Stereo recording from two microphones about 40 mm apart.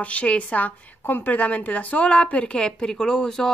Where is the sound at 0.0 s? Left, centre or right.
Left.